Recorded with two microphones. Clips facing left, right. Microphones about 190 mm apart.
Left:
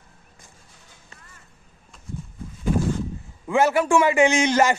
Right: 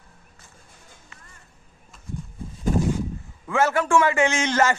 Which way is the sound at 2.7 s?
40° right (ahead or behind).